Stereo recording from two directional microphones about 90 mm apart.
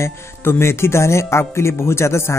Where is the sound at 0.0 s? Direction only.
30° left (ahead or behind).